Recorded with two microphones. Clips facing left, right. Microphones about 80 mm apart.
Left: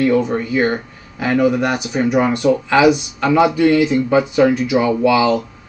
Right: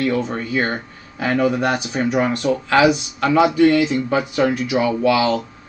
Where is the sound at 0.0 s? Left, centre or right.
Centre.